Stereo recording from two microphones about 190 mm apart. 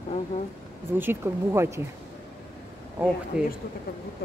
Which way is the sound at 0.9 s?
10° right (ahead or behind).